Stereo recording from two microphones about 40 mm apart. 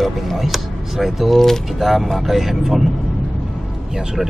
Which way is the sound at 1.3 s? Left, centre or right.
Centre.